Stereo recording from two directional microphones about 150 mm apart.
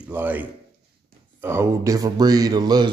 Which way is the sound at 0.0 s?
10° right (ahead or behind).